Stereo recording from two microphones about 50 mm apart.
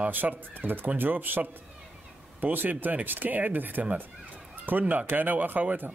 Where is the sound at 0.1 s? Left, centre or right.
Right.